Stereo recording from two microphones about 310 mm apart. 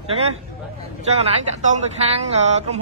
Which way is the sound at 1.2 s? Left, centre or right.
Centre.